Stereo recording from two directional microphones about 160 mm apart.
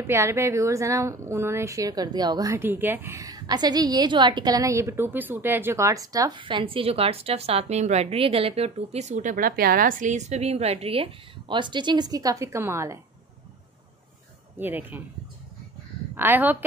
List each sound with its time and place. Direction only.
0.0 s a woman's voice: 15° right (ahead or behind)
14.6 s speech: 10° right (ahead or behind)
16.2 s speech: 10° right (ahead or behind)